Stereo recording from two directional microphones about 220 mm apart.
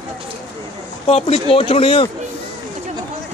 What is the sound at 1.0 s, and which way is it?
Speech, 25° left (ahead or behind).